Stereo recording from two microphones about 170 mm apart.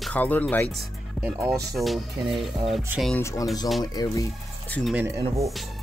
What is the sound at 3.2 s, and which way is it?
Speech, 20° left (ahead or behind).